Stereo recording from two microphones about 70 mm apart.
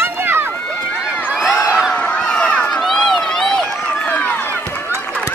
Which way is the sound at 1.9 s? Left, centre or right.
Centre.